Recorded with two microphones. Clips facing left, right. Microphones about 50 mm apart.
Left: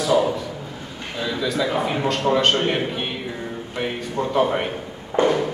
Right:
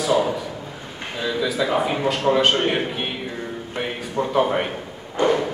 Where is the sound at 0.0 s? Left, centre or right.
Centre.